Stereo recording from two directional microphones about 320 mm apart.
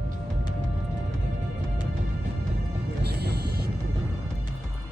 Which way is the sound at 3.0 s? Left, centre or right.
Right.